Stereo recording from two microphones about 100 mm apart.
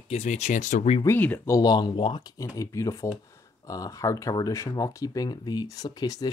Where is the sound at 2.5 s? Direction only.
35° left (ahead or behind).